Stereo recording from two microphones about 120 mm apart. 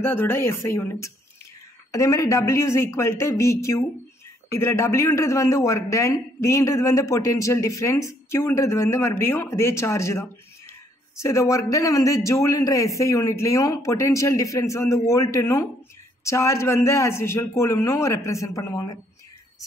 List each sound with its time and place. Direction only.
0.0 s a man's voice: 20° left (ahead or behind)